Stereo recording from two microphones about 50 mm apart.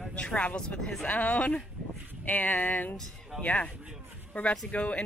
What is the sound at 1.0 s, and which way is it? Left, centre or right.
Speech, left.